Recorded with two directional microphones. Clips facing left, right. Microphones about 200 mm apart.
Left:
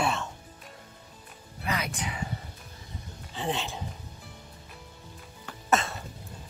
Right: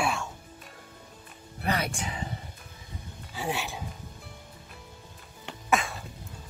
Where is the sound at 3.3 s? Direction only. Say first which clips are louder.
Left 1 dB; 5° right (ahead or behind).